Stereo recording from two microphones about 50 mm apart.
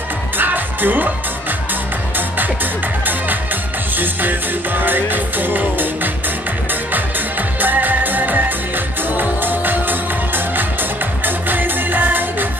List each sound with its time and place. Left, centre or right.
0.4 s music: right
2.1 s music: right
7.6 s music: right